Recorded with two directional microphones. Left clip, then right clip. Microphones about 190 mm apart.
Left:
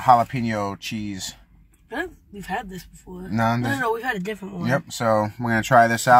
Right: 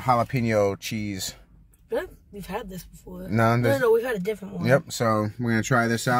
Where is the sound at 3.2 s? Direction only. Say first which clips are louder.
Right 1 dB; 40° right (ahead or behind).